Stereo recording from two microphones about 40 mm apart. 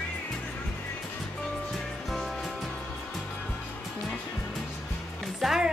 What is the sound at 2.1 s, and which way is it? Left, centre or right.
Music, centre.